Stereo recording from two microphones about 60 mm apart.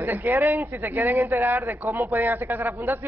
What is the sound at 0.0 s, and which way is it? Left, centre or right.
Speech, right.